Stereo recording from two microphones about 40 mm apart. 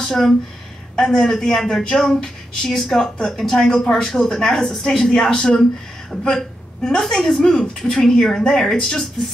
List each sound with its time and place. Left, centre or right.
0.0 s a woman's voice: centre
4.8 s a woman's voice: left